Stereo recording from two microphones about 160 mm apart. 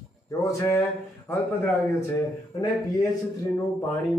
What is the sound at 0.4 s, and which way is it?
A man's voice, 20° left (ahead or behind).